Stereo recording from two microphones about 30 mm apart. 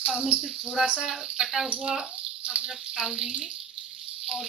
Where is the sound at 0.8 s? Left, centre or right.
Right.